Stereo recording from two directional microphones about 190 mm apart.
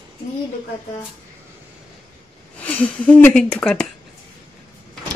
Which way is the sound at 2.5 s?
5° left (ahead or behind).